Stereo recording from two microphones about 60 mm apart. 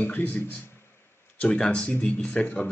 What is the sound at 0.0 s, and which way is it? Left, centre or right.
Speech, left.